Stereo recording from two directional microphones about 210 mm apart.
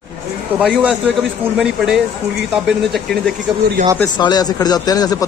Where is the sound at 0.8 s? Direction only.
5° right (ahead or behind).